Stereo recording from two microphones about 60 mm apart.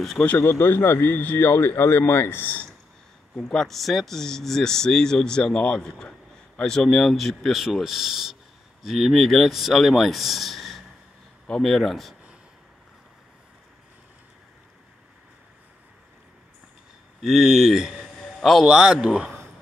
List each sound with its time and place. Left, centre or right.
0.4 s speech: left
3.3 s speech: centre
11.4 s speech: centre
17.2 s speech: centre
18.2 s a sound: centre
18.7 s a man's voice: centre